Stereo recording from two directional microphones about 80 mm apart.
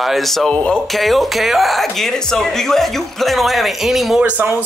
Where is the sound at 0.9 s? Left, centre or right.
Centre.